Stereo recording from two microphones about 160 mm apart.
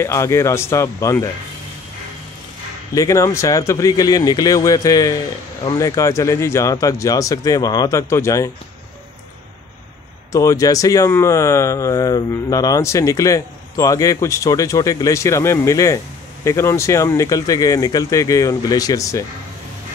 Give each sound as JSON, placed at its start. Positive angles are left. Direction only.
{"t": 0.0, "sound": "speech", "side_deg": 15}
{"t": 2.9, "sound": "speech", "side_deg": 20}
{"t": 10.3, "sound": "speech", "side_deg": 20}